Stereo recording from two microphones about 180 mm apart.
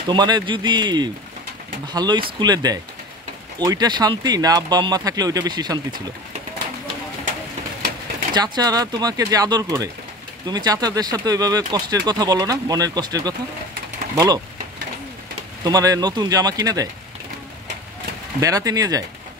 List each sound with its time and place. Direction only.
0.1 s speech: 25° right (ahead or behind)
8.4 s speech: 20° right (ahead or behind)
15.6 s speech: 20° right (ahead or behind)
18.4 s speech: 20° right (ahead or behind)